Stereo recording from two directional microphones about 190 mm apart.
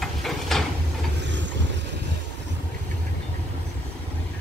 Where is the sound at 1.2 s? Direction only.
70° right (ahead or behind).